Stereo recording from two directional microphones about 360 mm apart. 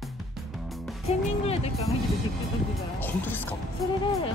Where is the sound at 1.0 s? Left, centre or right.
Centre.